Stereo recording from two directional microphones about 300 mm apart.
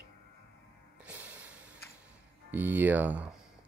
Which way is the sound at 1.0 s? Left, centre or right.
Centre.